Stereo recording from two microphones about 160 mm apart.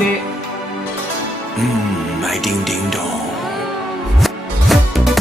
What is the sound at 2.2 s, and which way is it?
Music, centre (ahead or behind).